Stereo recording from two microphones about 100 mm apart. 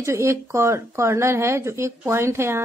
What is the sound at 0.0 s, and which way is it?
A woman's voice, 30° right (ahead or behind).